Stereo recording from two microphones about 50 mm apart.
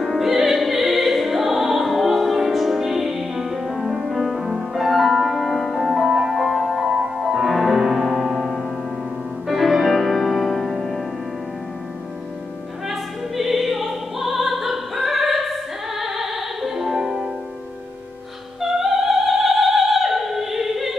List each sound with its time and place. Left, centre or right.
0.0 s music: centre
12.8 s opera: centre
18.6 s opera: centre